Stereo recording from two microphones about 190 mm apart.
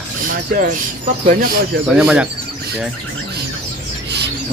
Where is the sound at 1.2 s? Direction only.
50° right (ahead or behind).